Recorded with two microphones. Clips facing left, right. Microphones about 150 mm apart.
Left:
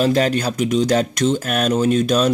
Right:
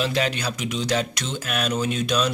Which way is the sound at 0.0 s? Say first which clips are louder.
Left 7 dB; 40° left (ahead or behind).